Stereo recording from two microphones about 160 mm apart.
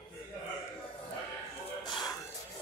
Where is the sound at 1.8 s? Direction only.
30° left (ahead or behind).